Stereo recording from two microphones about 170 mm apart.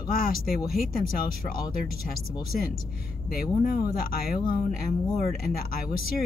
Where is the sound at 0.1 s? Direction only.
60° left (ahead or behind).